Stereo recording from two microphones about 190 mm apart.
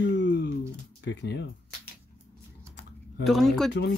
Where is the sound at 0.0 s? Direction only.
65° left (ahead or behind).